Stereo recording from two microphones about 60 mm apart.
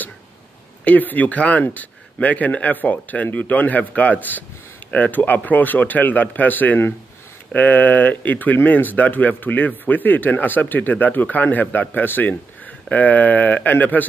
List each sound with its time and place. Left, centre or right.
0.8 s speech: left